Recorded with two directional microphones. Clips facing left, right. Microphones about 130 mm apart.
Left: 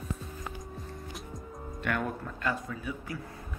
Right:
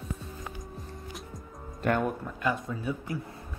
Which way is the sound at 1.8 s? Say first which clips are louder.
Right 5 dB; 35° right (ahead or behind).